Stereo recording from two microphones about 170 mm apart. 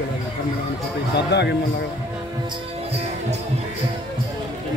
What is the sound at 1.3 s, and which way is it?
Speech, 85° left.